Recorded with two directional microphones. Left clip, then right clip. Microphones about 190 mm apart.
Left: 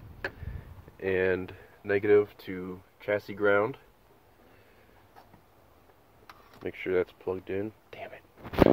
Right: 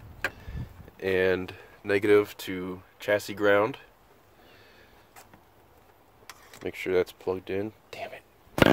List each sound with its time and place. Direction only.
0.9 s speech: 15° right (ahead or behind)
2.3 s speech: 15° right (ahead or behind)
6.6 s speech: 15° right (ahead or behind)